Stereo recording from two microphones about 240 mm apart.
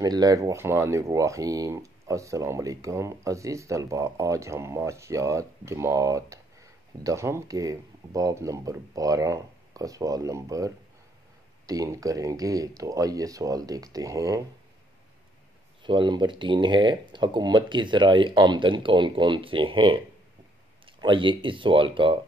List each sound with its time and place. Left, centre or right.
0.0 s speech: centre
15.8 s speech: centre